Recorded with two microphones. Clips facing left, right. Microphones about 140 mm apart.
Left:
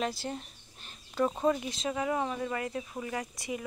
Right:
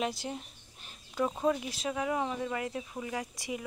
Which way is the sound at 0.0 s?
20° right (ahead or behind).